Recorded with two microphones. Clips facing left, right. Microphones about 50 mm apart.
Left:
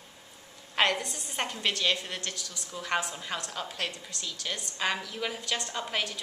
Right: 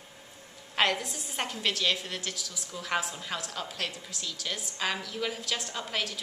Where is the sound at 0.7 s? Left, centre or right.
Centre.